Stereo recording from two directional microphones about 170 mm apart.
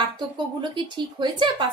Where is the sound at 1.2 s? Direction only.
25° right (ahead or behind).